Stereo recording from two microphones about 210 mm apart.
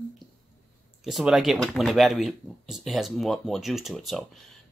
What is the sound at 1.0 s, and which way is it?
Speech, centre (ahead or behind).